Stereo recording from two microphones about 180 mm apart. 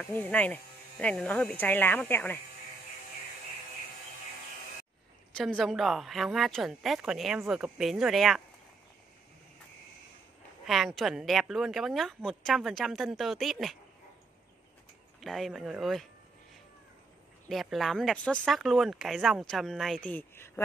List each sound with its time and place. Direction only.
0.0 s speech: 10° left (ahead or behind)
5.4 s a woman's voice: centre (ahead or behind)
10.6 s a woman's voice: centre (ahead or behind)
15.1 s a woman's voice: centre (ahead or behind)
17.5 s a woman's voice: centre (ahead or behind)